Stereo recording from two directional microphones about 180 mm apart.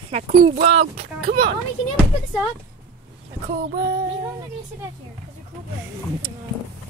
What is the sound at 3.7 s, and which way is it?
Female singing, 55° right (ahead or behind).